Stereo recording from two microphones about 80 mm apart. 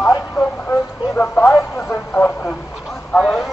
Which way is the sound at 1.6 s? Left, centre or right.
Left.